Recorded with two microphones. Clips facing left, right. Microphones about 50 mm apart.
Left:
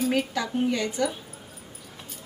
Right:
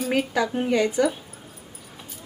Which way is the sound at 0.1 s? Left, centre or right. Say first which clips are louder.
Right 3 dB; centre.